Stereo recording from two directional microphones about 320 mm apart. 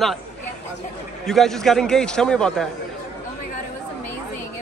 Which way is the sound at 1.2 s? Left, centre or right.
Centre.